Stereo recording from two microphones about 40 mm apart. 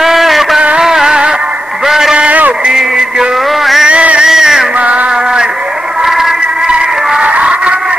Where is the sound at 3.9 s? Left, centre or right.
Right.